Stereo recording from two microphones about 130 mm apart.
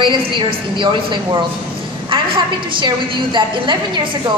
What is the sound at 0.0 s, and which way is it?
A woman's voice, 40° right (ahead or behind).